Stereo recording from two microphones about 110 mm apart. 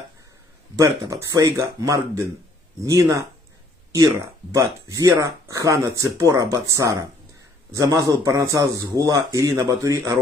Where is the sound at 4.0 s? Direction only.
30° right (ahead or behind).